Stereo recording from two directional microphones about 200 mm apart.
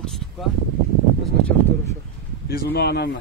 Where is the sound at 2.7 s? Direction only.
55° left (ahead or behind).